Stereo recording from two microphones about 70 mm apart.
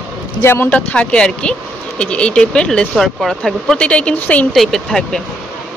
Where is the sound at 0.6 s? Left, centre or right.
Centre.